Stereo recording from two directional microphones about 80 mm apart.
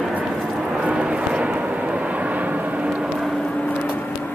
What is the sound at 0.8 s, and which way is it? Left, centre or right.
Vehicle, centre.